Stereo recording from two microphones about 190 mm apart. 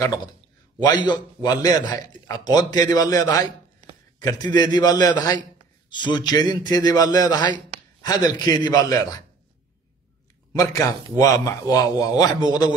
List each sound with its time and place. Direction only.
0.0 s a man's voice: 20° left (ahead or behind)
10.5 s a man's voice: 15° left (ahead or behind)